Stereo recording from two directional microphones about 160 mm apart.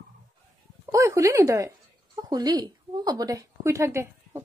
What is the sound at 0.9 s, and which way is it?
A woman's voice, 20° right (ahead or behind).